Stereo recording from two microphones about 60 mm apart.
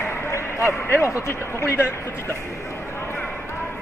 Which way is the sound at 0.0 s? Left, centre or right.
Left.